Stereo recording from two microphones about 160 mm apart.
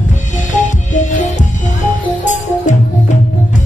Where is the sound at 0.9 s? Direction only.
50° left (ahead or behind).